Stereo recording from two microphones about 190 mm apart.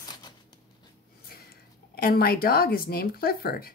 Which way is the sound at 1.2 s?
55° left (ahead or behind).